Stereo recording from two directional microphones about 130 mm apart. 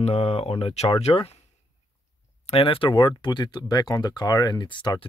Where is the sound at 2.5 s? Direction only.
45° left (ahead or behind).